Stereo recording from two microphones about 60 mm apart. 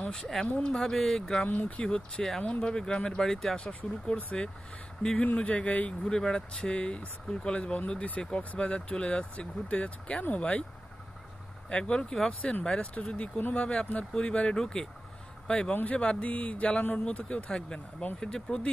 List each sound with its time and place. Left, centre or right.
0.0 s a sound: centre
0.3 s speech: centre
1.5 s speech: left; by 3.5 s centre
3.5 s speech: centre
11.7 s speech: centre